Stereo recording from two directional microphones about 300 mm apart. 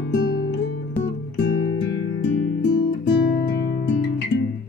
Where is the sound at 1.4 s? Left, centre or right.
Left.